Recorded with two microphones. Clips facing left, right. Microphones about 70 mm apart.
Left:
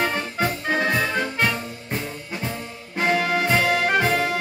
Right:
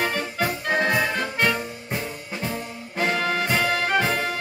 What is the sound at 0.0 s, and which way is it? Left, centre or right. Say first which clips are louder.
Organ: left 1 dB; centre.